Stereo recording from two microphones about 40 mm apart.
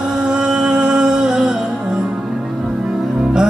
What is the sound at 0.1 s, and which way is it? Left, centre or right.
Music, right.